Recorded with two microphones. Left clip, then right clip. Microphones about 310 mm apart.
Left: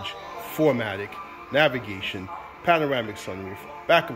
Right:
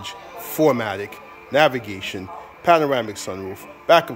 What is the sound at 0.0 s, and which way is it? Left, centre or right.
Speech, centre.